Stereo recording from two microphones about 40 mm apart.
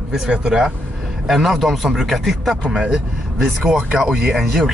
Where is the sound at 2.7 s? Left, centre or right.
Centre.